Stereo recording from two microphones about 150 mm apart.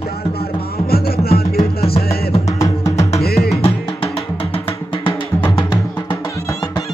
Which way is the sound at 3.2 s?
90° left.